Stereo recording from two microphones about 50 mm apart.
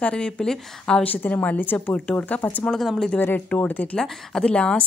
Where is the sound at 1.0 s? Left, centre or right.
Left.